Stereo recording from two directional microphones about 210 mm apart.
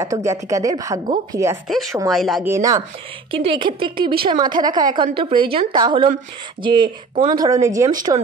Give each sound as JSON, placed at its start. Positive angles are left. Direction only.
{"t": 0.0, "sound": "speech", "side_deg": -15}
{"t": 1.7, "sound": "speech", "side_deg": 0}
{"t": 2.4, "sound": "speech", "side_deg": -15}
{"t": 3.3, "sound": "a woman's voice", "side_deg": -25}